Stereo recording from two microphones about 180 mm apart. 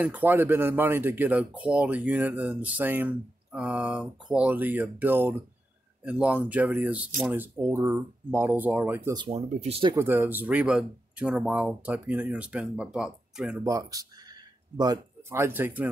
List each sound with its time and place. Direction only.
0.0 s speech: 10° right (ahead or behind)
9.1 s speech: 25° right (ahead or behind)
9.9 s speech: 15° right (ahead or behind)
13.7 s speech: 20° right (ahead or behind)